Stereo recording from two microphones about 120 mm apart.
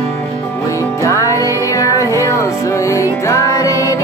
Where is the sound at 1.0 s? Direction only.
25° left (ahead or behind).